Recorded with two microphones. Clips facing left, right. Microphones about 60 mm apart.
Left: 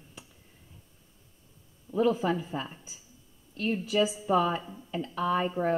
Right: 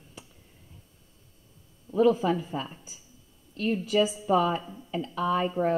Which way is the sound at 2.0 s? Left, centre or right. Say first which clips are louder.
Right 3 dB; left.